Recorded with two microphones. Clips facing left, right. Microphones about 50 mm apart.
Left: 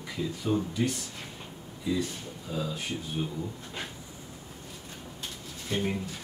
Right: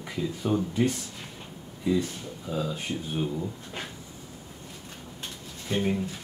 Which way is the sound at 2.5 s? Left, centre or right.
Centre.